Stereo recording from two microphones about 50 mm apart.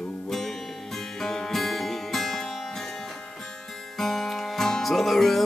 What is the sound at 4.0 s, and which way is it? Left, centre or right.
Music, centre.